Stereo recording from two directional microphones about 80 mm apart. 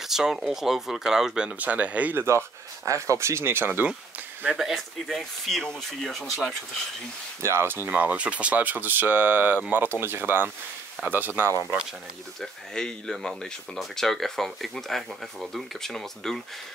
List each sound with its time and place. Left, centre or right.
0.1 s speech: centre
2.2 s speech: right
4.6 s speech: centre
7.4 s speech: right
12.4 s speech: centre